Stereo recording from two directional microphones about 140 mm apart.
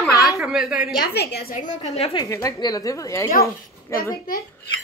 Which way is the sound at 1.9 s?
45° left (ahead or behind).